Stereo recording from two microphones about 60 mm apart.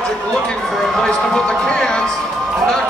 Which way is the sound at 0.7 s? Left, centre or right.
Centre.